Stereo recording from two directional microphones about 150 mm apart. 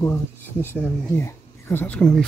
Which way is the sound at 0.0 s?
15° left (ahead or behind).